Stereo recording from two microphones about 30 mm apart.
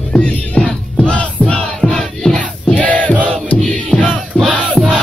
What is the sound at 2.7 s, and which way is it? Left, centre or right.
Crowd, left.